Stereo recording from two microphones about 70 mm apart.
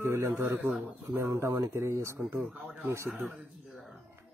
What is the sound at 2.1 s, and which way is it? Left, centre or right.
Speech, right.